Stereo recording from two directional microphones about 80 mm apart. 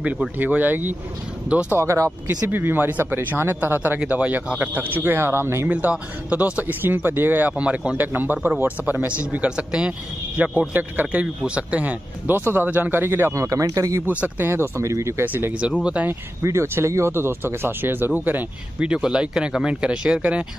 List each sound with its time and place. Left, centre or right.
0.4 s speech: right
1.7 s speech: right
5.7 s speech: centre; by 14.0 s right
14.0 s speech: right
14.5 s speech: right
15.2 s speech: right
16.1 s speech: right; by 20.4 s centre